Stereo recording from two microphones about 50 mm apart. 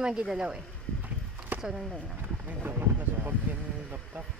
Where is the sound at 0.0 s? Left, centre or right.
Centre.